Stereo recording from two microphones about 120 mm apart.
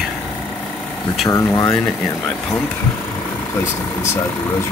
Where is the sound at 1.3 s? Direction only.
25° left (ahead or behind).